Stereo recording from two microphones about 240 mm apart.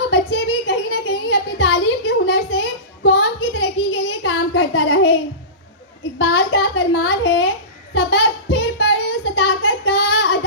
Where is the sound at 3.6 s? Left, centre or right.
Left.